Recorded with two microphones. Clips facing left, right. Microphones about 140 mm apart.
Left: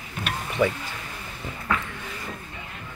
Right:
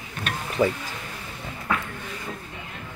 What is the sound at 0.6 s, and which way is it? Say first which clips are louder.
Speech: right 1 dB; 30° right (ahead or behind).